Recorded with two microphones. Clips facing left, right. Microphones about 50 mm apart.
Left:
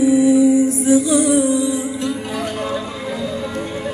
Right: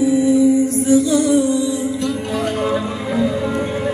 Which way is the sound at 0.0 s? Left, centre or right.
Centre.